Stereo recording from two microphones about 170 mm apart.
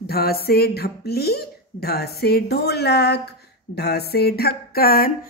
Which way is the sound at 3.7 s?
70° left (ahead or behind).